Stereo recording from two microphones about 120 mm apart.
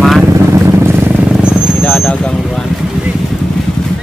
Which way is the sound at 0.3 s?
25° right (ahead or behind).